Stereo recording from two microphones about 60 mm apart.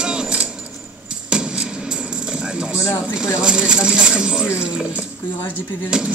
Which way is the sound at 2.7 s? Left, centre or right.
Left.